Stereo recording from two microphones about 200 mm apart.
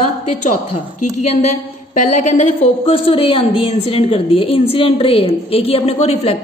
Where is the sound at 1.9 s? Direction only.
40° left (ahead or behind).